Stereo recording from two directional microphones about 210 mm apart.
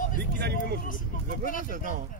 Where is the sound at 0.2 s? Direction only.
50° right (ahead or behind).